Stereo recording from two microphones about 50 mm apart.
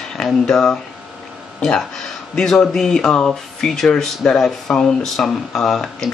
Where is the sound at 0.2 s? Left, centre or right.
Centre.